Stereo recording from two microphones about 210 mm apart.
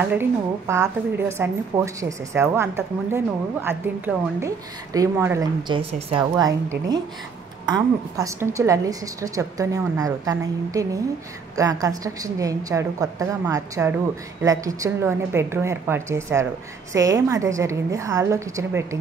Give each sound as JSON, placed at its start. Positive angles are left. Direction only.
{"t": 0.0, "sound": "a woman's voice", "side_deg": -10}